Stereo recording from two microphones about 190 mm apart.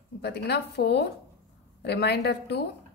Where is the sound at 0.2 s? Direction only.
60° left (ahead or behind).